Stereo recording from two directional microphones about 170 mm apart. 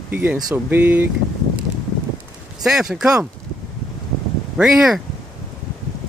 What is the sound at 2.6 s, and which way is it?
Speech, 5° right (ahead or behind).